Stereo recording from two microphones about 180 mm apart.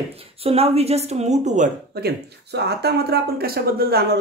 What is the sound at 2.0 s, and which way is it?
Speech, 65° right (ahead or behind).